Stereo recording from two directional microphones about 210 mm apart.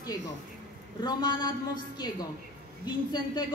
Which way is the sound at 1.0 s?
20° left (ahead or behind).